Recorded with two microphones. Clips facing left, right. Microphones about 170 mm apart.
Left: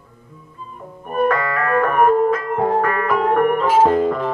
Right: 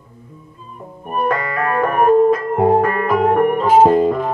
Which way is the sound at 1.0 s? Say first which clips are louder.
Left 1 dB; 15° right (ahead or behind).